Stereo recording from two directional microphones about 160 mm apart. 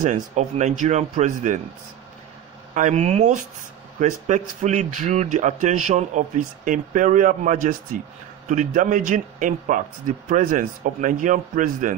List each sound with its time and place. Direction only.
0.0 s a man's voice: 50° right (ahead or behind)
2.7 s a man's voice: 45° right (ahead or behind)